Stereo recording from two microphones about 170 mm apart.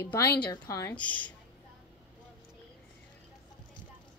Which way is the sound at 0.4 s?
20° left (ahead or behind).